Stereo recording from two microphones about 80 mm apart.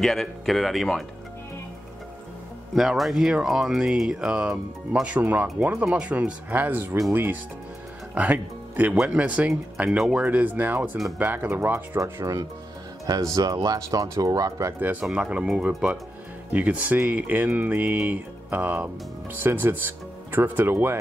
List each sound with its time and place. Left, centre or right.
0.0 s speech: centre
2.7 s speech: centre; by 7.0 s right
8.1 s speech: centre
8.9 s speech: centre
9.2 s speech: centre
9.8 s speech: centre
10.1 s speech: centre
12.0 s speech: right
14.8 s speech: right